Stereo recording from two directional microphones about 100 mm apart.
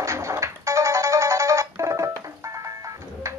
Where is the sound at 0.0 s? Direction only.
30° right (ahead or behind).